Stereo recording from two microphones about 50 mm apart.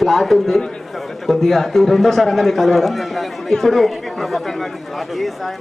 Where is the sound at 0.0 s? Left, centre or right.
Centre.